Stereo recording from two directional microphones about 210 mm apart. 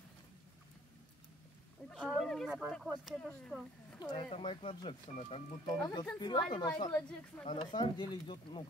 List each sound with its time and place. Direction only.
1.9 s speech: centre (ahead or behind)
4.0 s speech: 20° left (ahead or behind)